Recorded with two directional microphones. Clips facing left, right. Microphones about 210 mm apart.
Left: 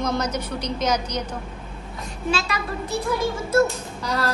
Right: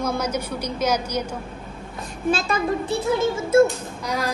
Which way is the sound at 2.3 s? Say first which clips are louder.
Right 3 dB; 50° right (ahead or behind).